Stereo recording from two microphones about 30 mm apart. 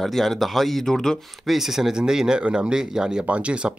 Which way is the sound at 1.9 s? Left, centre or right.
Right.